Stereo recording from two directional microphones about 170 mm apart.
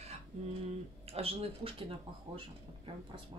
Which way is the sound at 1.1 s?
35° right (ahead or behind).